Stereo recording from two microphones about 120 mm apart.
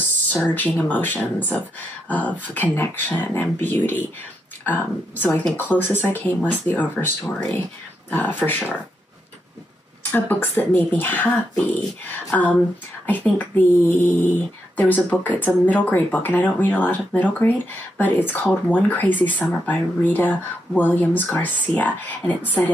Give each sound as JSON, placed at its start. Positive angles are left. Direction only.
{"t": 0.3, "sound": "speech", "side_deg": 15}
{"t": 10.1, "sound": "speech", "side_deg": 15}